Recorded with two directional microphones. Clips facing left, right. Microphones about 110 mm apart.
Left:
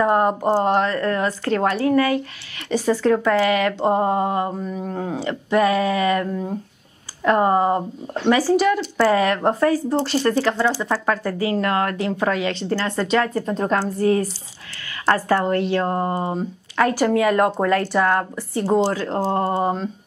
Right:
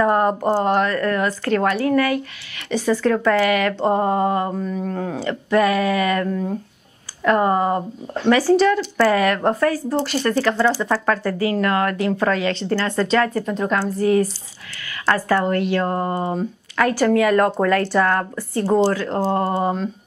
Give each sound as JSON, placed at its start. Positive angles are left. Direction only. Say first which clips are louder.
{"t": 0.0, "sound": "a sound", "louder": "even", "side_deg": 20}
{"t": 0.7, "sound": "speech", "louder": "right 1 dB", "side_deg": 25}
{"t": 10.7, "sound": "speech", "louder": "right 2 dB", "side_deg": 10}
{"t": 12.2, "sound": "speech", "louder": "right 2 dB", "side_deg": 15}
{"t": 13.6, "sound": "a woman's voice", "louder": "even", "side_deg": 40}